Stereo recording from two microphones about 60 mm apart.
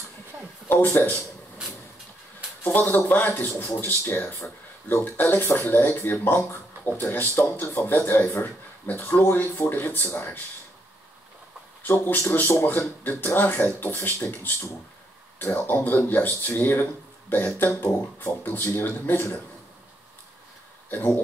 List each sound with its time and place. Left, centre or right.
0.7 s speech: left
2.6 s speech: left
12.2 s speech: left